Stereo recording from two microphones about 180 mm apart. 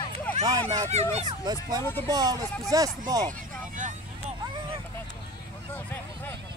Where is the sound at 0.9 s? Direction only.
40° right (ahead or behind).